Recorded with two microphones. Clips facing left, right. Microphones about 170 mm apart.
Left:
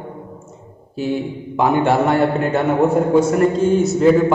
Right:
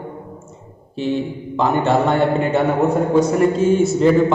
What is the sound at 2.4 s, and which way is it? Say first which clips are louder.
Speech: left 1 dB; centre (ahead or behind).